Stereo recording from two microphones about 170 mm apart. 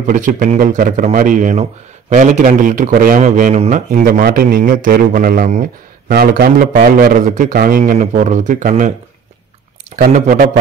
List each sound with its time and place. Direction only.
0.0 s speech: 50° right (ahead or behind)
9.9 s speech: 35° right (ahead or behind)